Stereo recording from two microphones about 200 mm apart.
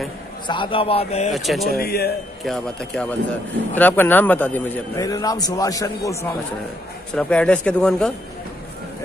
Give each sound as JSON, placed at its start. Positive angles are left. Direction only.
{"t": 0.5, "sound": "a man's voice", "side_deg": 25}
{"t": 1.3, "sound": "speech", "side_deg": 0}
{"t": 1.8, "sound": "a man's voice", "side_deg": 50}
{"t": 2.4, "sound": "a man's voice", "side_deg": 5}
{"t": 7.2, "sound": "speech", "side_deg": 5}